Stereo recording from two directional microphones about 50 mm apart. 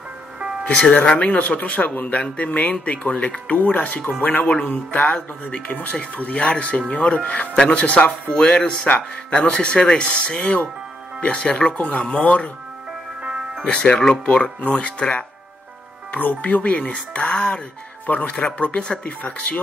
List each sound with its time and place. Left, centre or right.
0.7 s speech: left
8.8 s speech: left
12.0 s speech: centre
13.7 s speech: centre
18.0 s speech: left